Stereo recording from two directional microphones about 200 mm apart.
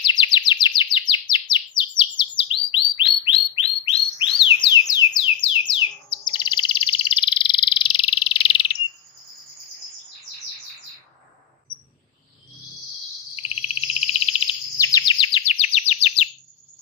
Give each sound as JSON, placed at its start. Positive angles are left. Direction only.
{"t": 0.0, "sound": "chirp", "side_deg": 20}
{"t": 13.4, "sound": "frog", "side_deg": 30}
{"t": 14.8, "sound": "chirp", "side_deg": 20}